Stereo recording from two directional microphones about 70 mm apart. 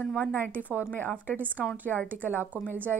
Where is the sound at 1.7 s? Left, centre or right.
Left.